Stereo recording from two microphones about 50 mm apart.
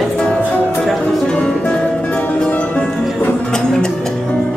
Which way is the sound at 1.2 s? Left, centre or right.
Left.